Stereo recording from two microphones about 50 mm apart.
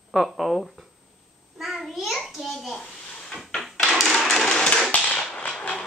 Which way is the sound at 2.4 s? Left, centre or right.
Centre.